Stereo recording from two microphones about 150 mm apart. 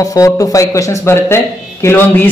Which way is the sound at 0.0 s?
20° left (ahead or behind).